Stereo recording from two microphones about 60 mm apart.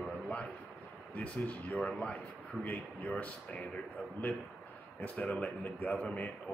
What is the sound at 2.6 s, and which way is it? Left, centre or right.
Speech, left.